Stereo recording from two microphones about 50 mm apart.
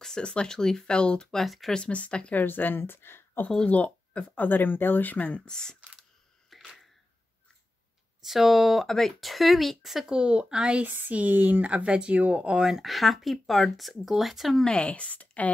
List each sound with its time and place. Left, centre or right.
0.0 s speech: centre
1.4 s speech: centre
1.7 s speech: left
2.3 s a woman's voice: left
3.4 s speech: left
4.5 s speech: left
5.4 s speech: centre
6.5 s camera: centre
8.2 s speech: centre
10.1 s speech: centre
10.8 s speech: right
12.6 s speech: centre
14.6 s speech: centre